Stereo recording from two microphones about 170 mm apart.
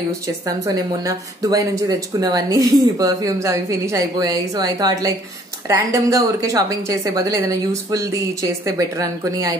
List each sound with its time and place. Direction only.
1.0 s a woman's voice: 20° right (ahead or behind)